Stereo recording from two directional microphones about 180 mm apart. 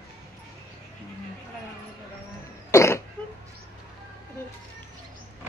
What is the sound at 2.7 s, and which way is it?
Throat clearing, 15° left (ahead or behind).